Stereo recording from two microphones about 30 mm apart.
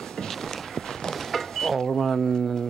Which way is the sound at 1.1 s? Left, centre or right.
Centre.